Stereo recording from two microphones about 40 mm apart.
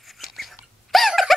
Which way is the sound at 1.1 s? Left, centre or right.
Centre.